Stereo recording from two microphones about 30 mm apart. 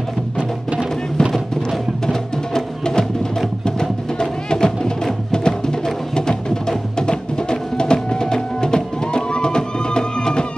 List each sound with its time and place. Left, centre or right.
2.0 s music: centre